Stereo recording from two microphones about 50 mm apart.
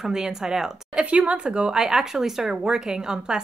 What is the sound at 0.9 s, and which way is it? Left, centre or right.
Speech, right.